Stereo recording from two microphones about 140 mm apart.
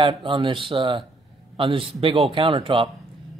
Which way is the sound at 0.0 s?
35° right (ahead or behind).